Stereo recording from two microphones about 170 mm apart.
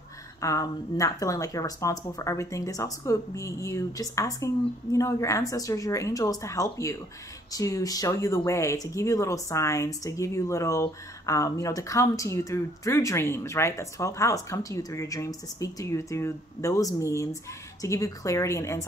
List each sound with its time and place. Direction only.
0.4 s speech: 20° left (ahead or behind)